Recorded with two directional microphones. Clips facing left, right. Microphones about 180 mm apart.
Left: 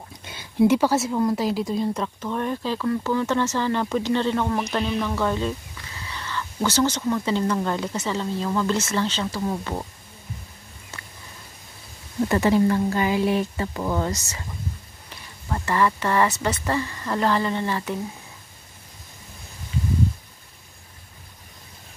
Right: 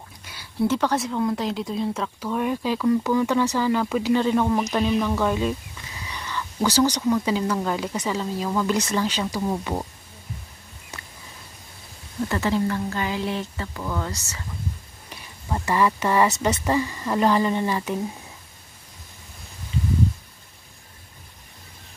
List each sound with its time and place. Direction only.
0.2 s speech: 20° left (ahead or behind); by 9.8 s 15° right (ahead or behind)
12.3 s speech: 15° left (ahead or behind)
13.7 s speech: 30° left (ahead or behind)
15.5 s speech: 15° right (ahead or behind)